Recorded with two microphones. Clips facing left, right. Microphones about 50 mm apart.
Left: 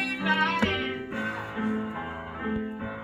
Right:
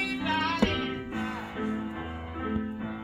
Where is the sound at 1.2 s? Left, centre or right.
Centre.